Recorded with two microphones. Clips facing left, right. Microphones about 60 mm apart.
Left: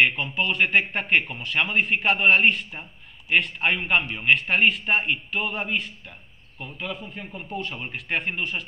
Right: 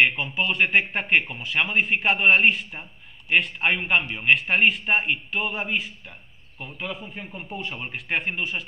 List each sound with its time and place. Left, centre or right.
0.0 s a man's voice: centre